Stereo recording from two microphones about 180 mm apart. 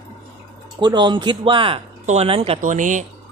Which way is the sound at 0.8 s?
25° right (ahead or behind).